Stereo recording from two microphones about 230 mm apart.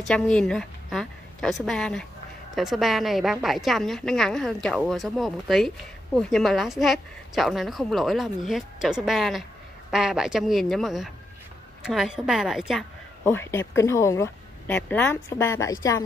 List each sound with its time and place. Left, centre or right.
0.0 s a woman's voice: centre
13.2 s a woman's voice: centre